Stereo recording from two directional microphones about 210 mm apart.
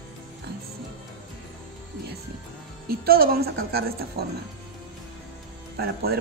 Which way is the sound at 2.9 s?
45° right (ahead or behind).